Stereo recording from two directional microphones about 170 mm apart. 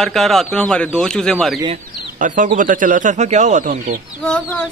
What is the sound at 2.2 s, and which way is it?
Speech, 50° right (ahead or behind).